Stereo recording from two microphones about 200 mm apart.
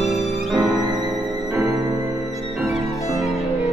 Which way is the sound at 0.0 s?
Centre (ahead or behind).